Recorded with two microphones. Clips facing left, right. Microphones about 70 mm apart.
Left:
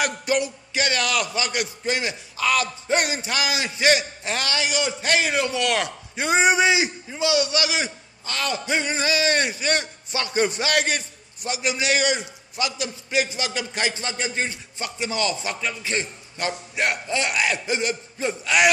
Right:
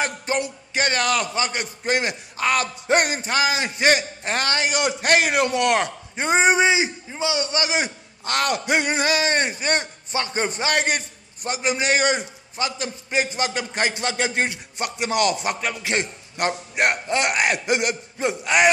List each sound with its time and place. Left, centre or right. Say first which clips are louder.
0.4 s a man's voice: right 1 dB; right
2.0 s a man's voice: right 2 dB; right
10.1 s a man's voice: left 1 dB; right
13.9 s a man's voice: right 4 dB; right